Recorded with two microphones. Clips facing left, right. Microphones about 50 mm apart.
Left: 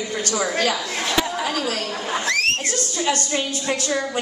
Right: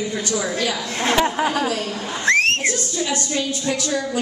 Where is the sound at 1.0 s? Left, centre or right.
Right.